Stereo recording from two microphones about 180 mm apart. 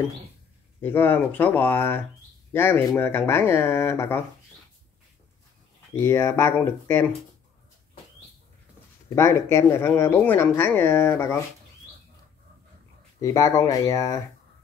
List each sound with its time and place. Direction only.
0.8 s speech: 10° left (ahead or behind)
5.9 s speech: 15° left (ahead or behind)
9.1 s speech: 15° left (ahead or behind)
13.2 s speech: 15° left (ahead or behind)